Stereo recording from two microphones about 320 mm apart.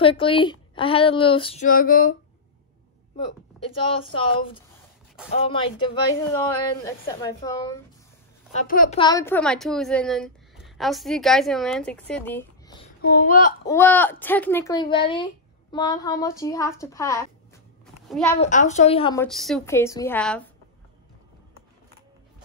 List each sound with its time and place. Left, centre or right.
0.0 s speech: centre
3.2 s speech: centre
8.5 s speech: left
9.0 s a woman's voice: centre
13.0 s speech: left
13.7 s a woman's voice: centre
18.4 s speech: left
19.2 s a woman's voice: centre